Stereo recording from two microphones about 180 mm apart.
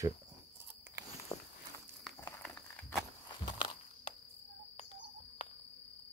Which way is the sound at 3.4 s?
25° left (ahead or behind).